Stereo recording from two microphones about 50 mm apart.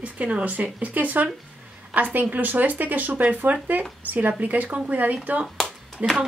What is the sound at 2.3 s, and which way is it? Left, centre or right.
Speech, right.